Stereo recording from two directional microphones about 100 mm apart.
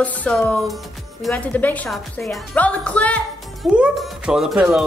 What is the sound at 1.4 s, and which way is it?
A woman's voice, 15° left (ahead or behind).